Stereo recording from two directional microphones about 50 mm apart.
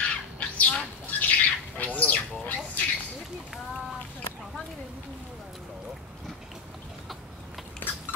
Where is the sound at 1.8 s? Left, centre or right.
Left.